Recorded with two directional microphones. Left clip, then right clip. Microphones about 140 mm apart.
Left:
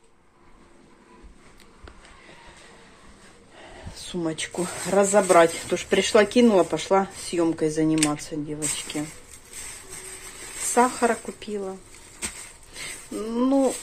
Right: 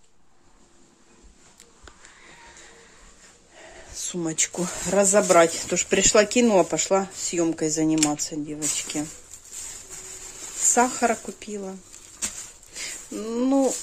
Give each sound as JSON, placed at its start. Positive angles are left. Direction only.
{"t": 3.5, "sound": "a sound", "side_deg": -20}
{"t": 3.9, "sound": "speech", "side_deg": -30}
{"t": 10.7, "sound": "speech", "side_deg": -25}
{"t": 12.7, "sound": "speech", "side_deg": -25}